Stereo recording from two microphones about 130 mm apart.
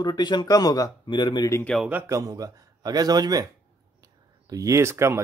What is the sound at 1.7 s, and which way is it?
Speech, 5° left (ahead or behind).